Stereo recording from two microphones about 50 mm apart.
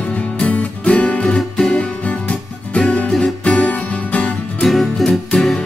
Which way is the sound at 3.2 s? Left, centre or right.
Left.